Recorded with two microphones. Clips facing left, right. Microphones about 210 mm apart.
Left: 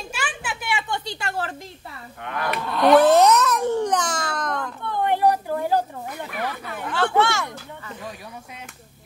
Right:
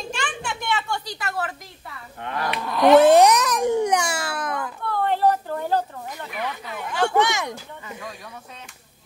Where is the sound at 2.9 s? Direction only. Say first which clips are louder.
Right 1 dB; 20° right (ahead or behind).